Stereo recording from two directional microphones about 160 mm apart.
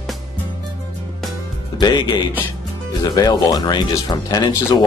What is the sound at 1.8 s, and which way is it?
Speech, 25° left (ahead or behind).